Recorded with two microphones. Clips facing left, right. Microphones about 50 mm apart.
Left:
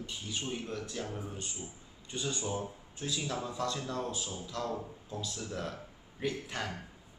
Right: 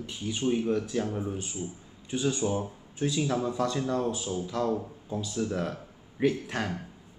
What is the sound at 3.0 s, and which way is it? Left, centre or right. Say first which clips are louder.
Speech: right 9 dB; right.